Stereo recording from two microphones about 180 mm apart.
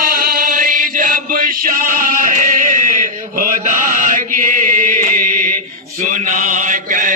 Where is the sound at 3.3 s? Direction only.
50° right (ahead or behind).